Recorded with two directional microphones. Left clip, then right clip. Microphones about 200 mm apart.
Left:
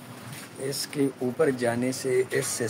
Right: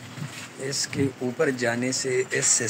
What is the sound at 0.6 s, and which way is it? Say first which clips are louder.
Speech: right 1 dB; 5° left (ahead or behind).